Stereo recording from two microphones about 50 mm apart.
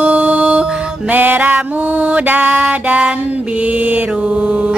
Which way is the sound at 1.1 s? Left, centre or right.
Right.